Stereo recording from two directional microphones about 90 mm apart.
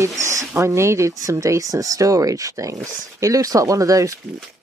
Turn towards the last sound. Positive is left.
turn(degrees=-40)  # may be behind; listen again after turning